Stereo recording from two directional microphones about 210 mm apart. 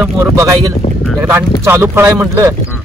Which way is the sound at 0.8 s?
40° left (ahead or behind).